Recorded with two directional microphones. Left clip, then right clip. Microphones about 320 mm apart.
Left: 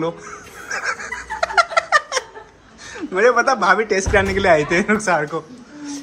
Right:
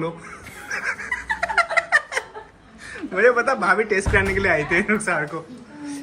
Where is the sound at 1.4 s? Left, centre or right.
Centre.